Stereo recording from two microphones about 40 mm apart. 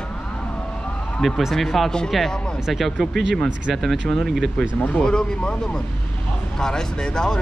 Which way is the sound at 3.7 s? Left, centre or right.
Centre.